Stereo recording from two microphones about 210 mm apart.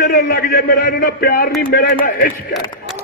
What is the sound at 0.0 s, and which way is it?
A man's voice, 45° left (ahead or behind).